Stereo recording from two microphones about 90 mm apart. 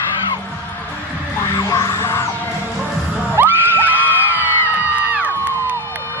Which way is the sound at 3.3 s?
20° right (ahead or behind).